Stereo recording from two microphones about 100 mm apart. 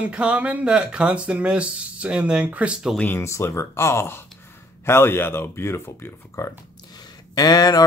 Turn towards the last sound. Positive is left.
turn(degrees=40)  # may be behind; listen again after turning